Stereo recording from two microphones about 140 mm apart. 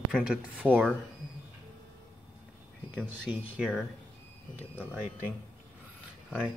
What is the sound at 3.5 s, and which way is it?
Speech, 5° right (ahead or behind).